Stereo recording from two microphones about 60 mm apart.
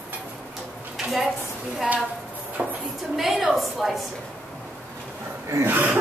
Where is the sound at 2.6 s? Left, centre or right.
Right.